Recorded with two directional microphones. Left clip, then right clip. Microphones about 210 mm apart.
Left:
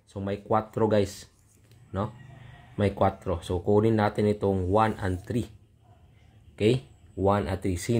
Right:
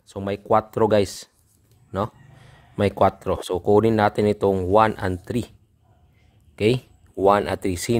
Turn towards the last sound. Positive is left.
turn(degrees=-40)  # may be behind; listen again after turning